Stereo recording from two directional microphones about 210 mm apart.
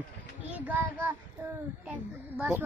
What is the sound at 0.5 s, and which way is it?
A man's voice, 10° right (ahead or behind).